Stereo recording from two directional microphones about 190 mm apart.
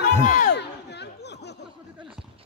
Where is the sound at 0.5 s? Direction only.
65° left (ahead or behind).